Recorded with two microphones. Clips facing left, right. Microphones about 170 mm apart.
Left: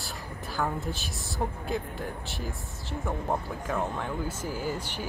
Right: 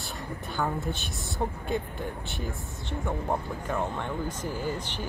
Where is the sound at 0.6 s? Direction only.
Centre (ahead or behind).